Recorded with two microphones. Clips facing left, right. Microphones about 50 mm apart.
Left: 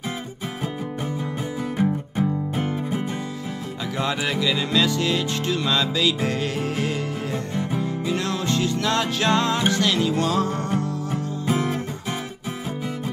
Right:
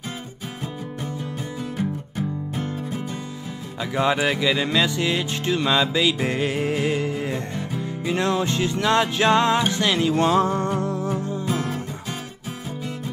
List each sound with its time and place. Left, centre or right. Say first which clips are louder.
1.8 s music: left 5 dB; left
3.9 s music: right 4 dB; centre
11.4 s music: left 6 dB; left